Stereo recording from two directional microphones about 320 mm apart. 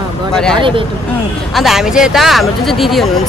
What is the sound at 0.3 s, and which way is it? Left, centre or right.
Speech, centre.